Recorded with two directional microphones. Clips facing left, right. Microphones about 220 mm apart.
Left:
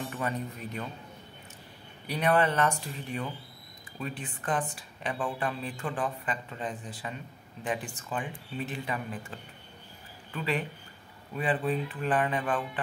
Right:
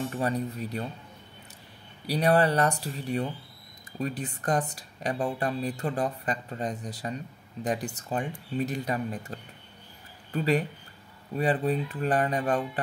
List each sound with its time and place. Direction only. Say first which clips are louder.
0.1 s speech: right 5 dB; 35° right (ahead or behind)
2.0 s speech: right 3 dB; 35° right (ahead or behind)